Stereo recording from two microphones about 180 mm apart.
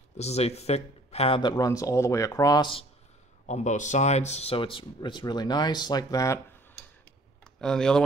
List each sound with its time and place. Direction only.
0.2 s speech: 35° left (ahead or behind)
3.4 s speech: 40° left (ahead or behind); by 6.4 s 20° left (ahead or behind)
7.6 s speech: 5° left (ahead or behind)